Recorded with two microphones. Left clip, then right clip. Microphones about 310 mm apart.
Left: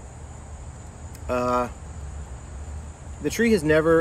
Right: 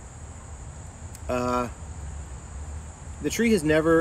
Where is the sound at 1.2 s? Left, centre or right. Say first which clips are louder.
Left 3 dB; centre.